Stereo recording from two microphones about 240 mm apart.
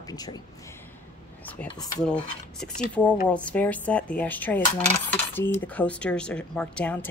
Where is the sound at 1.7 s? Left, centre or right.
Centre.